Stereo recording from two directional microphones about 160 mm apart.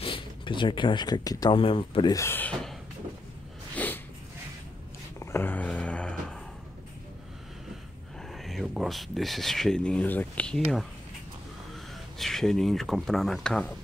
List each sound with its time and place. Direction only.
0.0 s speech: 30° left (ahead or behind)
1.6 s speech: 35° left (ahead or behind)
2.1 s speech: 15° left (ahead or behind)
3.7 s snort: 10° left (ahead or behind)
5.2 s a sound: 15° left (ahead or behind)
8.3 s speech: centre (ahead or behind)
11.7 s speech: centre (ahead or behind)